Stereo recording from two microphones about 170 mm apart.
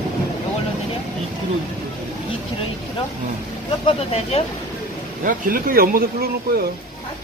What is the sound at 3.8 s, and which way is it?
Speech, 35° left (ahead or behind).